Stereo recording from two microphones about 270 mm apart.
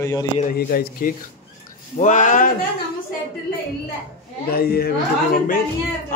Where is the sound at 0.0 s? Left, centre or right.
Centre.